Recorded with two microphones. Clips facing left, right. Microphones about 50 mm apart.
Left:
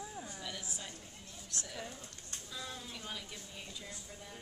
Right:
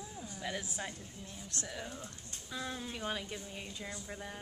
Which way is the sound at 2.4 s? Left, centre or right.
Right.